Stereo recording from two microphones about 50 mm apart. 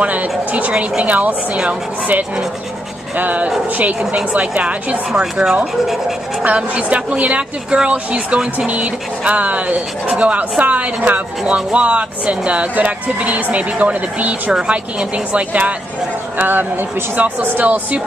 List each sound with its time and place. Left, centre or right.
0.0 s speech: right
5.1 s speech: centre
6.4 s speech: right
14.5 s speech: centre
16.3 s speech: right